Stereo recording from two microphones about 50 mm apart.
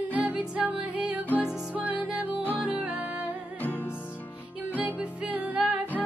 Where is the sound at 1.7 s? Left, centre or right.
Right.